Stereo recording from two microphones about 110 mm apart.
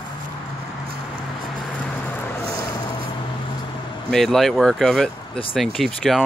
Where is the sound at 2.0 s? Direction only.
15° left (ahead or behind).